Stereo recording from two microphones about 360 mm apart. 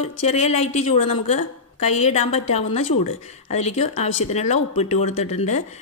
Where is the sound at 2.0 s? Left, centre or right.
Centre.